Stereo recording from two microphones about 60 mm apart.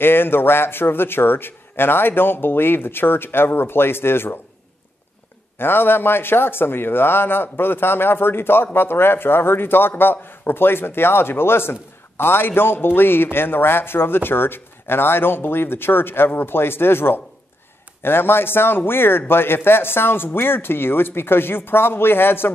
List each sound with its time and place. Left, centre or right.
0.0 s a man's voice: left
5.6 s a man's voice: left